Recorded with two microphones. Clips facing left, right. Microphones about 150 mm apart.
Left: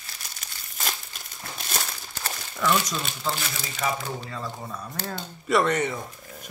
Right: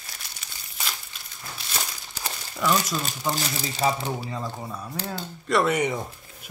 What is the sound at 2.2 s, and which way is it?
Crumpling, 10° right (ahead or behind).